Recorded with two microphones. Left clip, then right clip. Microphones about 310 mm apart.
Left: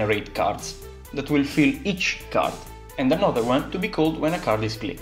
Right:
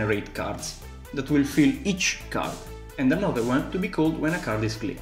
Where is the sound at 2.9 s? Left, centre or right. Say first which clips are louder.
Left 4 dB; centre.